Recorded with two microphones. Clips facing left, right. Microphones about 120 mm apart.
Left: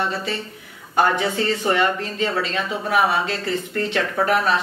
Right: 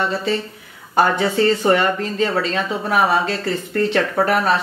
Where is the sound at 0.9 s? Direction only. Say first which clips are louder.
Right 3 dB; 35° right (ahead or behind).